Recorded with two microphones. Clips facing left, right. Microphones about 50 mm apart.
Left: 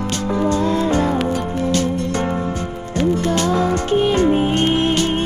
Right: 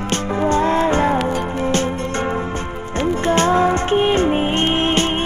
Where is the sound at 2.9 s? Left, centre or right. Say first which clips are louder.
Right 1 dB; right.